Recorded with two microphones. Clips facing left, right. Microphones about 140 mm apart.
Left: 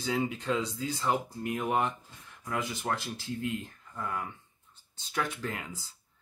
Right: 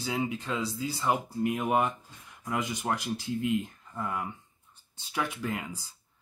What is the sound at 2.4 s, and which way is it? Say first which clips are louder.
Speech: right 2 dB; 15° right (ahead or behind).